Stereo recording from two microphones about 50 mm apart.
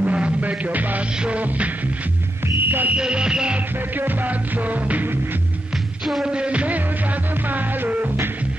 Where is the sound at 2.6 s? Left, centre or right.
Right.